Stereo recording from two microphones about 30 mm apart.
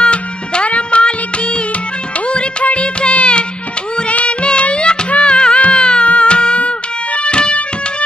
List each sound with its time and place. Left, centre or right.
0.0 s music: left